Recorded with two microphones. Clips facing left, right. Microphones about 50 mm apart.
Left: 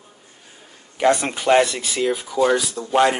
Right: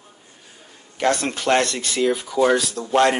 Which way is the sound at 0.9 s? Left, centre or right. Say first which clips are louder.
Left 3 dB; centre.